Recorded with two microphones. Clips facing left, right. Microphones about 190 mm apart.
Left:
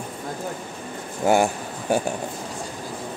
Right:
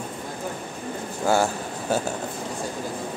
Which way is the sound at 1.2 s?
15° left (ahead or behind).